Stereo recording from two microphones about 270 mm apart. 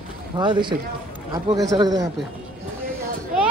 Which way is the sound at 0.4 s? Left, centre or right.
Centre.